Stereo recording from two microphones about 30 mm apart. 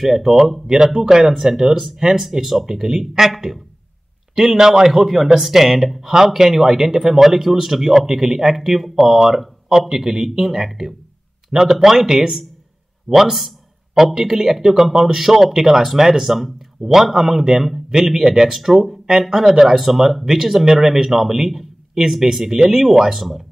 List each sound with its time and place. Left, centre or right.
0.0 s a man's voice: centre
17.3 s a man's voice: centre